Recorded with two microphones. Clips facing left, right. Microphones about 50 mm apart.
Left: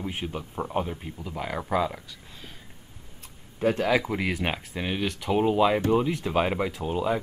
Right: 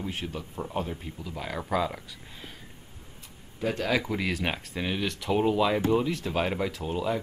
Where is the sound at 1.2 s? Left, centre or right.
Left.